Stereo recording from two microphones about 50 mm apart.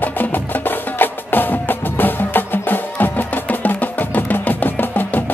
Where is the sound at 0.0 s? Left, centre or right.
Left.